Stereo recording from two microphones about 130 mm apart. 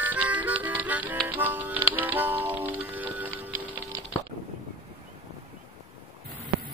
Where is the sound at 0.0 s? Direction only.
10° right (ahead or behind).